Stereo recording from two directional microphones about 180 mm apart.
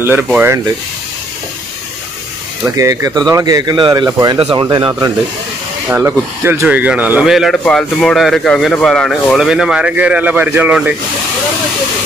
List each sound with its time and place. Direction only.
0.0 s speech: 10° right (ahead or behind)
2.6 s speech: 20° right (ahead or behind)
5.9 s speech: 10° right (ahead or behind)